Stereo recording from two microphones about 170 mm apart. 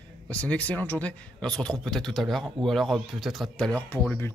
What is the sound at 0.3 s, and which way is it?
A man's voice, 10° left (ahead or behind).